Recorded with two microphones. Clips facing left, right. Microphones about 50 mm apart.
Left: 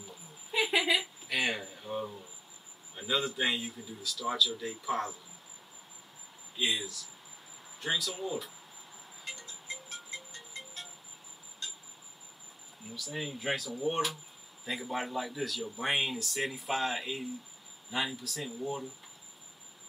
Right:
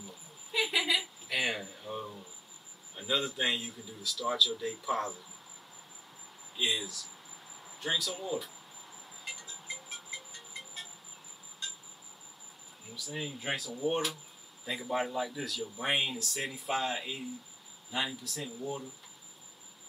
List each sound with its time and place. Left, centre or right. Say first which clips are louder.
0.5 s a woman's voice: left 2 dB; centre
0.9 s a sound: left 1 dB; centre
3.0 s speech: left 1 dB; centre
6.5 s speech: even; centre
9.2 s music: even; centre
12.9 s speech: left 1 dB; centre